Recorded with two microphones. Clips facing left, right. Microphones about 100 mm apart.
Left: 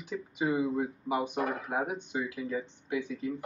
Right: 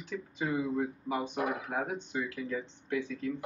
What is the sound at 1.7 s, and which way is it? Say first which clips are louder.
Speech: left 2 dB; 15° left (ahead or behind).